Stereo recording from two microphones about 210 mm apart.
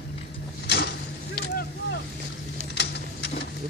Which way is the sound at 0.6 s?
45° left (ahead or behind).